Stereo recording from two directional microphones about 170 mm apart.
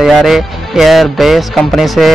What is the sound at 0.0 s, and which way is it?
Speech, centre (ahead or behind).